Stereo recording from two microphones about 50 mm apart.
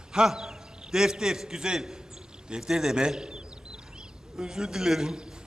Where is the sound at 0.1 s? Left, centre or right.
Centre.